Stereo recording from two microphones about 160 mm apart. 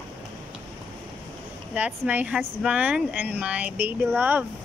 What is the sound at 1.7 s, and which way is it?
Speech, 5° right (ahead or behind).